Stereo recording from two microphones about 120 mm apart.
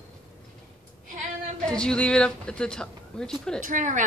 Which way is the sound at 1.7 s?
5° left (ahead or behind).